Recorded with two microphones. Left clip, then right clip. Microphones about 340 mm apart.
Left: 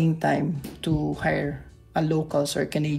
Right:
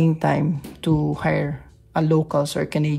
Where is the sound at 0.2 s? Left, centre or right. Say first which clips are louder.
Right 2 dB; centre.